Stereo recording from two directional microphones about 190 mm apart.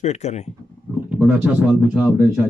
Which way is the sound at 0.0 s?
35° left (ahead or behind).